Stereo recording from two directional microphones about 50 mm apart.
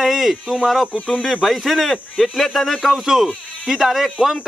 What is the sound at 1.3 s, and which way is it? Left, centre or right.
Speech, centre.